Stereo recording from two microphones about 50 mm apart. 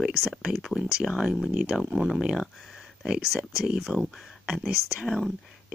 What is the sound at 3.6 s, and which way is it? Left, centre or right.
Speech, centre.